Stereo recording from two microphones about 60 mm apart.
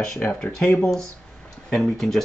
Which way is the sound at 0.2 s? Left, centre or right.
Centre.